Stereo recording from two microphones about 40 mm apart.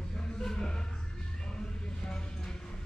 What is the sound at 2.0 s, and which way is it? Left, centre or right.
Music, centre.